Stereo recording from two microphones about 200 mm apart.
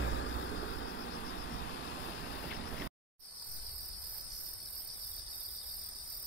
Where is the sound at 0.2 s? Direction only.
75° left (ahead or behind).